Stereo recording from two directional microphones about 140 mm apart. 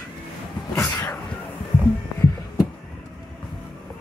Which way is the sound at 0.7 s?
20° left (ahead or behind).